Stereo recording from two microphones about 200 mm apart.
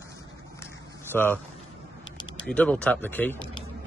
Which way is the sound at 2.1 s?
25° left (ahead or behind).